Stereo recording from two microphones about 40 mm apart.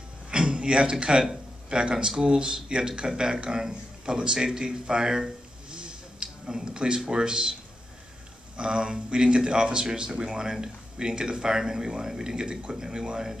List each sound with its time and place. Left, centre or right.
0.3 s speech: right
5.7 s a sound: right
7.1 s speech: centre
8.5 s speech: centre